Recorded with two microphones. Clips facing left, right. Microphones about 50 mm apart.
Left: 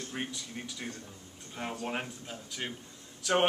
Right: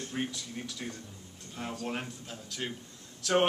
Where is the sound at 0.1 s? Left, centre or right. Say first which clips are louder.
Right 4 dB; centre.